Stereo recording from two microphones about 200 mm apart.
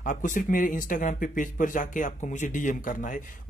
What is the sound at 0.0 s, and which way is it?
Speech, 40° left (ahead or behind).